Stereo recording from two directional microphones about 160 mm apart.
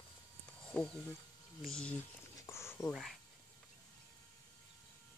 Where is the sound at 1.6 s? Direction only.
5° left (ahead or behind).